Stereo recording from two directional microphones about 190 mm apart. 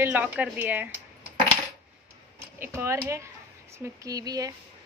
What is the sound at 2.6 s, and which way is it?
A woman's voice, 10° right (ahead or behind).